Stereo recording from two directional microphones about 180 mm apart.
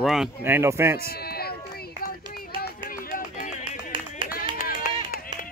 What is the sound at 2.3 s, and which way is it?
Music, 55° left (ahead or behind).